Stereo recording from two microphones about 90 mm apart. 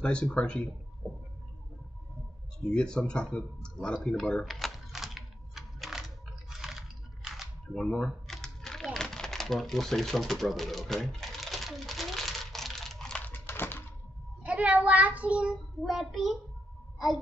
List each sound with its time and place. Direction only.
0.0 s speech: 10° left (ahead or behind)
2.6 s speech: 10° left (ahead or behind)
4.5 s typing: centre (ahead or behind)
7.2 s camera: centre (ahead or behind); by 13.8 s 25° left (ahead or behind)
14.4 s a child's voice: 15° right (ahead or behind)
15.8 s a child's voice: centre (ahead or behind)